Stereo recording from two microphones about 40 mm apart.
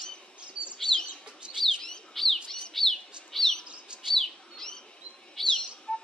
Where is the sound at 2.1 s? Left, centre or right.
Centre.